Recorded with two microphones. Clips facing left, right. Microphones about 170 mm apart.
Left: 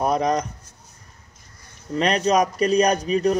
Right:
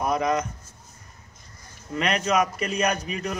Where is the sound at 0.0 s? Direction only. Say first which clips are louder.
Left 3 dB; 35° left (ahead or behind).